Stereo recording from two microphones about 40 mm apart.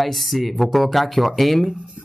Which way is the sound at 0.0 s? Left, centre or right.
Centre.